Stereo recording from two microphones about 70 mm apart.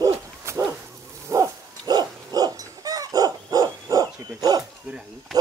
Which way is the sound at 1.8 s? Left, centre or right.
Right.